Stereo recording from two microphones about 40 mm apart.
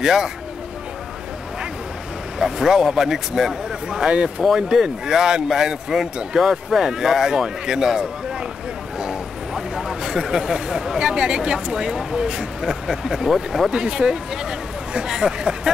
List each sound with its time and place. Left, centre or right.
0.0 s a man's voice: centre
2.3 s a man's voice: centre
13.7 s a man's voice: centre